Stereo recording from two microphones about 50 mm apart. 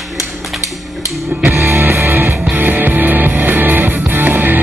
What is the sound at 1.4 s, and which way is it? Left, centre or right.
Music, right.